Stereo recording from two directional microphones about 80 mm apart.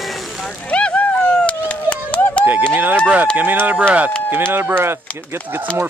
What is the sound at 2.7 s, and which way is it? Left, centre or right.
Speech, right.